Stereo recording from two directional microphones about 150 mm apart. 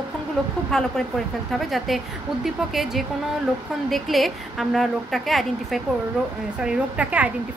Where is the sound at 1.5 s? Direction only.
Centre (ahead or behind).